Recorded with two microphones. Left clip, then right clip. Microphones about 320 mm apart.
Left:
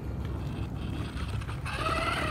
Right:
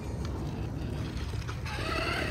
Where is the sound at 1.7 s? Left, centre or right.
Centre.